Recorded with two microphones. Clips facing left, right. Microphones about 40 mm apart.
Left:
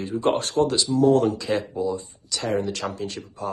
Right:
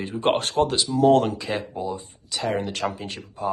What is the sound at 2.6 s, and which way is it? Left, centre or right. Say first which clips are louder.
Speech: even; right.